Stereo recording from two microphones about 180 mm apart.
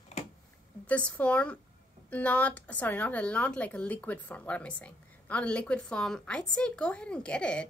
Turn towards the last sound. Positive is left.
turn(degrees=5)  # may be behind; listen again after turning